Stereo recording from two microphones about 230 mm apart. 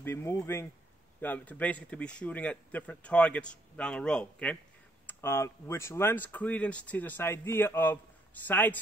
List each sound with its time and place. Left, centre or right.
0.0 s a man's voice: centre